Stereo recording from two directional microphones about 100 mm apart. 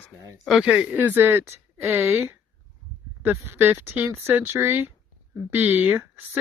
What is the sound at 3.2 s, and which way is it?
Speech, 20° right (ahead or behind).